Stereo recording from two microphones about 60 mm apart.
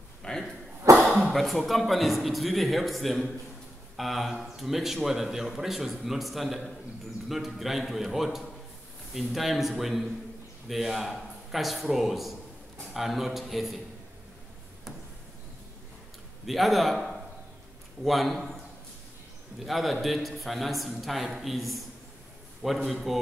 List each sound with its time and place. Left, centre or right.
0.2 s dog: centre
0.8 s cough: right
1.3 s a man's voice: centre
16.4 s a man's voice: centre
19.6 s a man's voice: centre